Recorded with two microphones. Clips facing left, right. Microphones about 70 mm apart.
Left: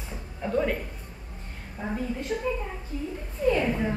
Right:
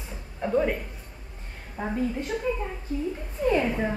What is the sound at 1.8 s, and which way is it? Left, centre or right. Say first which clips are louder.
Speech: right 2 dB; right.